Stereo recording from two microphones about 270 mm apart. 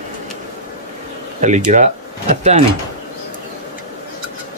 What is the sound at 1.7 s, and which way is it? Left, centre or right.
Speech, right.